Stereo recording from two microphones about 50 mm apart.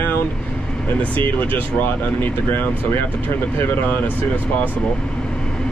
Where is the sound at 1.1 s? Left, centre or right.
Left.